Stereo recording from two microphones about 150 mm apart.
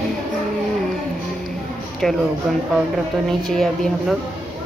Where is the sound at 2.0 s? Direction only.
Centre (ahead or behind).